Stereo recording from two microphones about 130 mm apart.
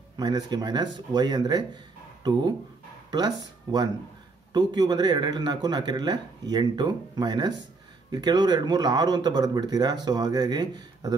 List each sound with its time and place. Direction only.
0.2 s speech: 30° right (ahead or behind)
3.1 s speech: 30° right (ahead or behind)